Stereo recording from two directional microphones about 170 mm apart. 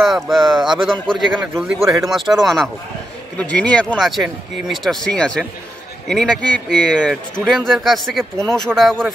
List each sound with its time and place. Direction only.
0.0 s speech: centre (ahead or behind)